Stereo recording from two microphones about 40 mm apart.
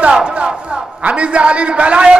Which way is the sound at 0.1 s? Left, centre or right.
Right.